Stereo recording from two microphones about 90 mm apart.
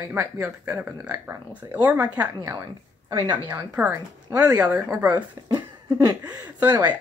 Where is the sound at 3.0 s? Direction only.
50° right (ahead or behind).